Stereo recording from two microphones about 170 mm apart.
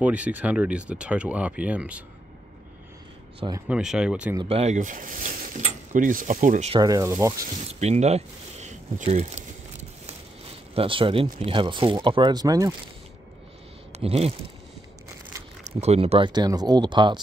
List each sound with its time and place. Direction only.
0.0 s speech: 10° right (ahead or behind)
3.6 s speech: 5° right (ahead or behind)
4.4 s speech: 35° right (ahead or behind)
6.7 s speech: 20° right (ahead or behind)
7.8 s a sound: 40° right (ahead or behind)
10.7 s speech: 30° right (ahead or behind)
13.9 s speech: 35° right (ahead or behind)
15.6 s speech: 40° right (ahead or behind)